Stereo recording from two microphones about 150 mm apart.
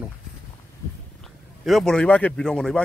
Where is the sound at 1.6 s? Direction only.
Centre (ahead or behind).